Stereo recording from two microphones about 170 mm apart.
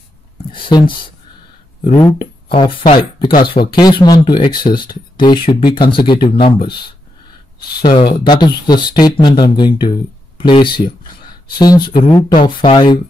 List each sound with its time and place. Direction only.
0.5 s a sound: 30° left (ahead or behind)
2.1 s speech: 30° left (ahead or behind)
3.0 s speech: 60° left (ahead or behind)
3.4 s speech: 25° left (ahead or behind)
7.8 s speech: 30° left (ahead or behind)